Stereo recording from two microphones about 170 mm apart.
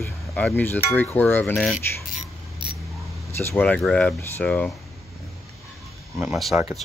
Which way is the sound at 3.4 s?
10° left (ahead or behind).